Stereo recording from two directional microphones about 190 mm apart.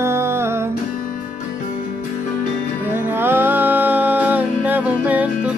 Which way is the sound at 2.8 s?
10° right (ahead or behind).